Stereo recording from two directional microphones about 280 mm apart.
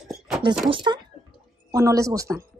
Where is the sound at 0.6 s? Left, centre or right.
Centre.